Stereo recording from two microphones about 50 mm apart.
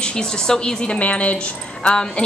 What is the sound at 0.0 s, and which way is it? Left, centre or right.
A woman's voice, centre.